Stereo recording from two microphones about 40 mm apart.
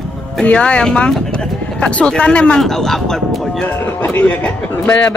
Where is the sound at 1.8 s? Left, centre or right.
Left.